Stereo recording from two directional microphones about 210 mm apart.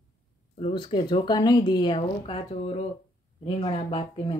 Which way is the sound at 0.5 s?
25° left (ahead or behind).